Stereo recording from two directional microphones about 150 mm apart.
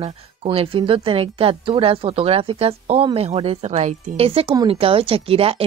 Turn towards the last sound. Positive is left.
turn(degrees=-40)  # may be behind; listen again after turning